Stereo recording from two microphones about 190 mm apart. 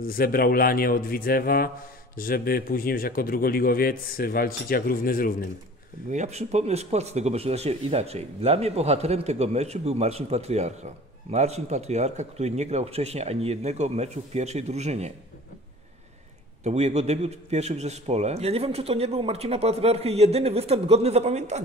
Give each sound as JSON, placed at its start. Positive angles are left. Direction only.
{"t": 0.0, "sound": "speech", "side_deg": 50}
{"t": 6.1, "sound": "speech", "side_deg": -35}
{"t": 16.6, "sound": "speech", "side_deg": -35}